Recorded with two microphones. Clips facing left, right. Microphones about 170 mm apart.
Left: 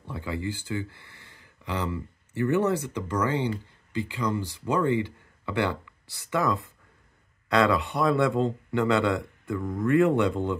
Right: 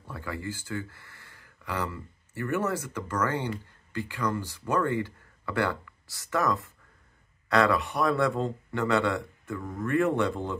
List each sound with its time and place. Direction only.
0.1 s a man's voice: 20° left (ahead or behind)